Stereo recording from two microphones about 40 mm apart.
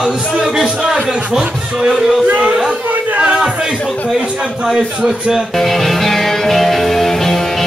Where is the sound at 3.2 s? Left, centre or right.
Centre.